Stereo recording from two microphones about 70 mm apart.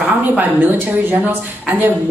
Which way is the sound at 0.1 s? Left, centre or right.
Right.